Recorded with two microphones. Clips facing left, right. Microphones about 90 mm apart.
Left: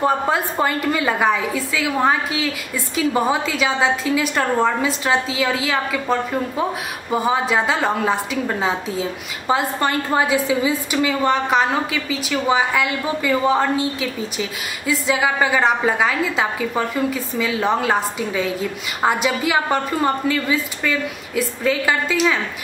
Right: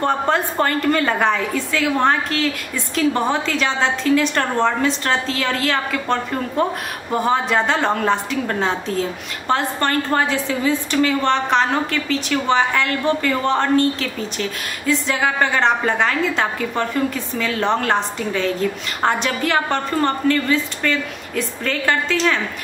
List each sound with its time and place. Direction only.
0.0 s a woman's voice: 5° left (ahead or behind)